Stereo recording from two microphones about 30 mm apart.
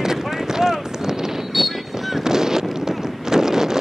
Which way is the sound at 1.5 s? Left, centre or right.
Centre.